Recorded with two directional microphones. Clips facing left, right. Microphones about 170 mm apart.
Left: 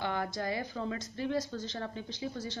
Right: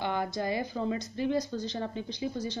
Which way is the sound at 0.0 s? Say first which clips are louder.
Right 3 dB; 20° right (ahead or behind).